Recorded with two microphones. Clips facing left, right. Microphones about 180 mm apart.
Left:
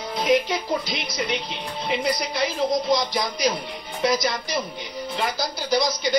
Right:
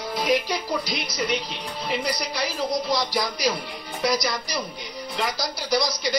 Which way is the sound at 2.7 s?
20° left (ahead or behind).